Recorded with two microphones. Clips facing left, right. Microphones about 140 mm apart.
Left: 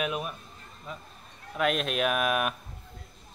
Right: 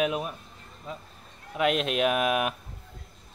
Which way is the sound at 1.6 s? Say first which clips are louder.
Right 2 dB; 20° right (ahead or behind).